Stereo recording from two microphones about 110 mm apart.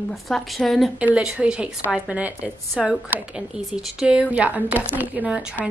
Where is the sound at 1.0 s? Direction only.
10° right (ahead or behind).